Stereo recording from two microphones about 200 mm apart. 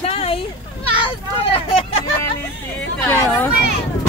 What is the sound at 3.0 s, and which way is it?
Speech, 10° left (ahead or behind).